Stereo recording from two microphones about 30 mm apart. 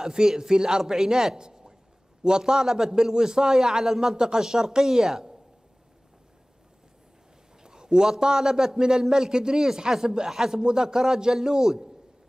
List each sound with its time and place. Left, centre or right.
0.0 s a man's voice: right
7.6 s a man's voice: right
9.3 s a man's voice: right